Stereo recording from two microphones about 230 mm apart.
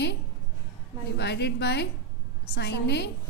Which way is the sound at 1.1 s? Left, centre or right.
Left.